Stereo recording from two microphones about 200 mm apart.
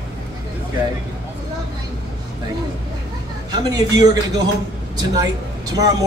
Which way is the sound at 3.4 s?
20° right (ahead or behind).